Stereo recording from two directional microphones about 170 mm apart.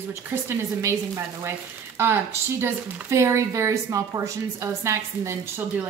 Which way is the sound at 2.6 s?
15° right (ahead or behind).